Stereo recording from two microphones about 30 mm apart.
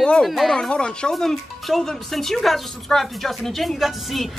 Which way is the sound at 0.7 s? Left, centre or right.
Left.